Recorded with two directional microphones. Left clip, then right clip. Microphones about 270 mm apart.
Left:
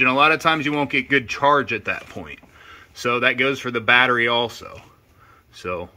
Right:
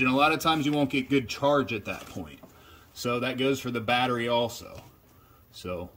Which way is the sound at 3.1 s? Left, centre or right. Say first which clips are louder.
Left 9 dB; left.